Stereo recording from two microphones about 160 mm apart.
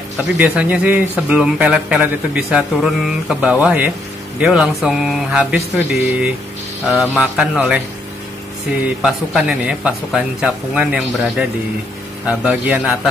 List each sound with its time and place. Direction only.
0.2 s speech: 10° right (ahead or behind)
8.8 s speech: 5° right (ahead or behind)